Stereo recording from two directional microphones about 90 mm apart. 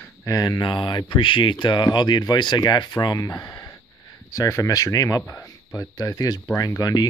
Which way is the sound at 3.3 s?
35° left (ahead or behind).